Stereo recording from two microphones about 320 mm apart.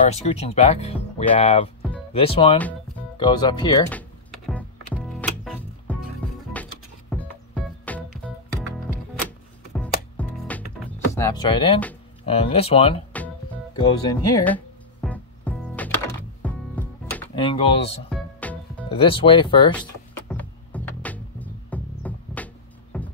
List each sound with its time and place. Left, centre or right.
0.1 s speech: centre
4.5 s music: centre
11.1 s speech: centre
13.7 s music: centre
17.4 s speech: centre
18.1 s music: centre
18.9 s speech: centre
19.7 s music: centre